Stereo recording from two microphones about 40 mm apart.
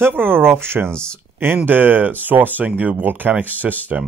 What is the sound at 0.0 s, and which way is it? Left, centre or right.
Speech, right.